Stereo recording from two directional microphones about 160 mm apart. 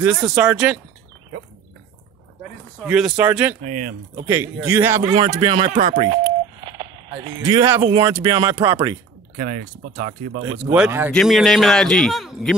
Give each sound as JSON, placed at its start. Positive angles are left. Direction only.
{"t": 0.0, "sound": "speech", "side_deg": 0}
{"t": 2.8, "sound": "a man's voice", "side_deg": -5}
{"t": 3.6, "sound": "speech", "side_deg": -55}
{"t": 4.3, "sound": "a man's voice", "side_deg": -15}
{"t": 6.6, "sound": "a sound", "side_deg": -30}
{"t": 7.9, "sound": "speech", "side_deg": -20}
{"t": 9.4, "sound": "speech", "side_deg": -55}
{"t": 10.7, "sound": "a man's voice", "side_deg": -10}
{"t": 11.1, "sound": "speech", "side_deg": 0}